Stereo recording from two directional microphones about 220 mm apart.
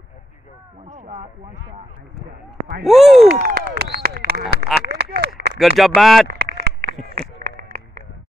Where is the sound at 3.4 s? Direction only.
40° right (ahead or behind).